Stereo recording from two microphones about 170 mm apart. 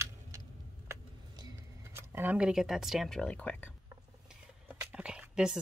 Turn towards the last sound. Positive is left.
turn(degrees=-5)  # may be behind; listen again after turning